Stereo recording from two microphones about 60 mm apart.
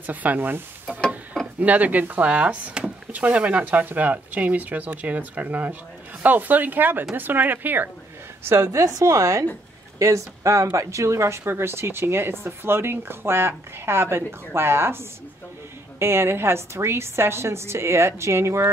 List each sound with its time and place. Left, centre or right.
0.0 s speech: right
1.6 s speech: right
8.5 s a woman's voice: right